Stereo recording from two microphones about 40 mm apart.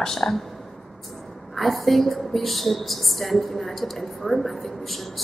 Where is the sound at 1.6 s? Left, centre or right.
Centre.